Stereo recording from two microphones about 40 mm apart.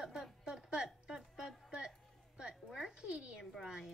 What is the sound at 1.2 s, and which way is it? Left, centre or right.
A woman's voice, centre.